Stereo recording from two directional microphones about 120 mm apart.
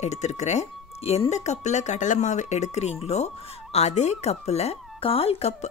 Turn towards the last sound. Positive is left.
turn(degrees=65)  # may be behind; listen again after turning